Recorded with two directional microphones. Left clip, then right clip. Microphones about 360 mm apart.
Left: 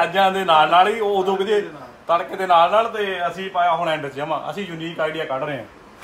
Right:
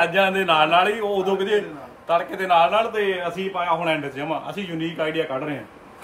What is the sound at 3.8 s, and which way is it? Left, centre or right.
A man's voice, centre.